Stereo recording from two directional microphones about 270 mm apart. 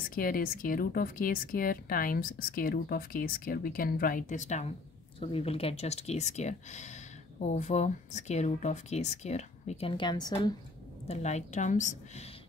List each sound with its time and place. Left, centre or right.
0.1 s speech: left